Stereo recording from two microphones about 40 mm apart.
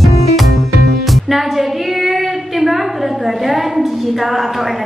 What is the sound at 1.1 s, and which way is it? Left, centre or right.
A woman's voice, centre.